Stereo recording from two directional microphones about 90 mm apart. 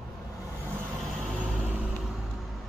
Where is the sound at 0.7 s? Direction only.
5° left (ahead or behind).